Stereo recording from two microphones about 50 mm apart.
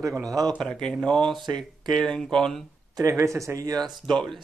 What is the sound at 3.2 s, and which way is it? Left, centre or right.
Speech, right.